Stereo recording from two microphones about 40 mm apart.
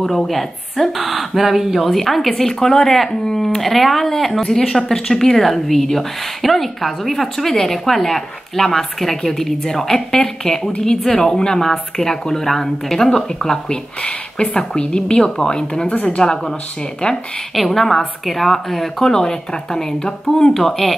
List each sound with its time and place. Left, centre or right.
0.0 s a woman's voice: centre
15.9 s speech: left
16.2 s speech: centre
17.6 s speech: centre